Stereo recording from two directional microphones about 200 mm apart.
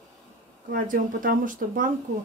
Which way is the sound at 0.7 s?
45° right (ahead or behind).